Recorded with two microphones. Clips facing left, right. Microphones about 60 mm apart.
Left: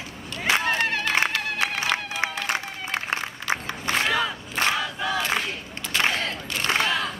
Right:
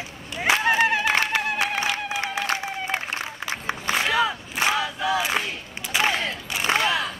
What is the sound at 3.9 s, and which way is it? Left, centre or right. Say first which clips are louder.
Battle cry: right 1 dB; centre.